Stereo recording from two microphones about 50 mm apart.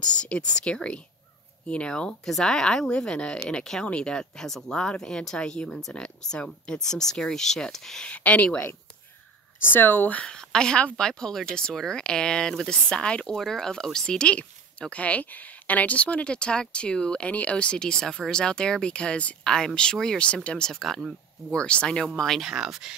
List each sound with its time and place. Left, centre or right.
0.0 s speech: centre
2.2 s speech: centre
8.0 s speech: left
9.6 s speech: left
10.2 s a woman's voice: centre
20.7 s speech: centre
21.5 s speech: centre
22.4 s speech: centre